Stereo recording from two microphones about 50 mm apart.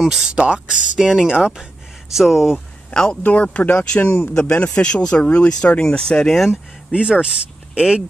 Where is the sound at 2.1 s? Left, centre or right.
Centre.